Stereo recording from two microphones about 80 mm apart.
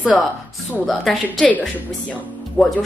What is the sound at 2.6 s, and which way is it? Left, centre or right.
Speech, centre.